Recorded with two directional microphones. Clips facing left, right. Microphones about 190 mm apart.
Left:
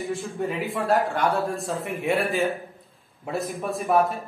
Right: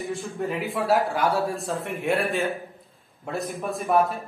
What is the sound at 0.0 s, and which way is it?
Speech, centre (ahead or behind).